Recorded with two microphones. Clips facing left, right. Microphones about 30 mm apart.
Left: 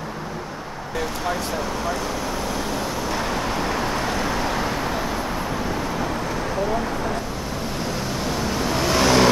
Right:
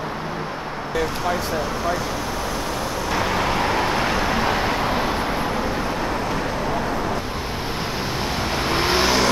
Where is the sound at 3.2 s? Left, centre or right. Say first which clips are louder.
Right 6 dB; right.